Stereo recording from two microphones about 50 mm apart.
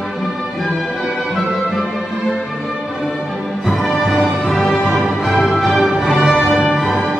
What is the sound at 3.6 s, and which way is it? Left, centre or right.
Music, centre.